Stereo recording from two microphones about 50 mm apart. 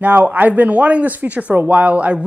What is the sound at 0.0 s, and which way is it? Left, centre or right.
A man's voice, right.